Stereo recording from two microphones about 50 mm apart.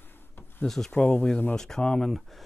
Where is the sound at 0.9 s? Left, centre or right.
Left.